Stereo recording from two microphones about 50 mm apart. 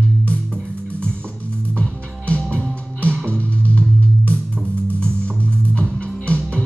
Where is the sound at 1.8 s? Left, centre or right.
Left.